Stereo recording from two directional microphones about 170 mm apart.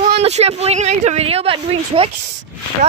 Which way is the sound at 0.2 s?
40° right (ahead or behind).